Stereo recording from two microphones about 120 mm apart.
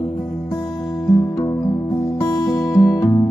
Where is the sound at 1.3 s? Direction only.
30° left (ahead or behind).